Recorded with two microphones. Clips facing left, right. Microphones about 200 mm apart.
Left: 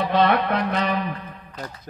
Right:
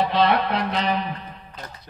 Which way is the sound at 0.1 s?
50° left (ahead or behind).